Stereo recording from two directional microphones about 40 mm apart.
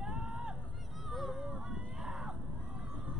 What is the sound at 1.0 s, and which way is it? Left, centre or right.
Honk, centre.